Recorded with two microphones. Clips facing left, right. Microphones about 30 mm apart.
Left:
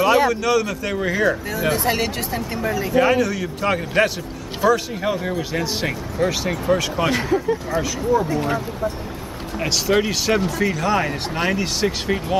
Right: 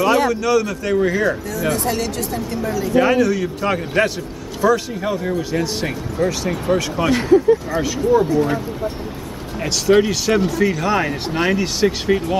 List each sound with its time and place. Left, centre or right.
0.0 s speech: centre
1.5 s speech: centre
2.9 s speech: centre
9.6 s speech: centre